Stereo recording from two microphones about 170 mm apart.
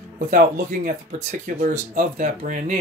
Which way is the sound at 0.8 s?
50° right (ahead or behind).